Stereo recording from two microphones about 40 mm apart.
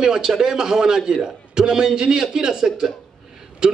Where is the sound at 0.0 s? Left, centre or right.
Centre.